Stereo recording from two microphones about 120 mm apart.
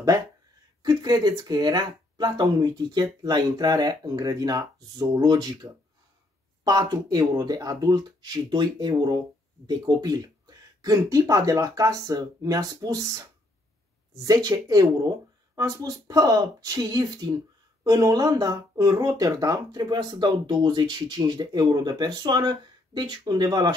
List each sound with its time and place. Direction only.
0.8 s speech: 35° right (ahead or behind)